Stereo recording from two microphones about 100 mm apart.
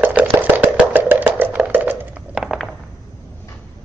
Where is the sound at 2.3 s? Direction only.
5° right (ahead or behind).